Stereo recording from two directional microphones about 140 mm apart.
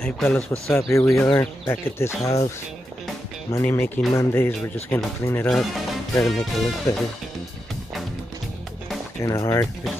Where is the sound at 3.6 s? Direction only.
15° left (ahead or behind).